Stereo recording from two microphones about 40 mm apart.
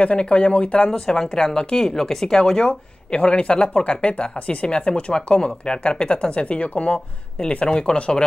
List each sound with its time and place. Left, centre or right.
0.0 s speech: left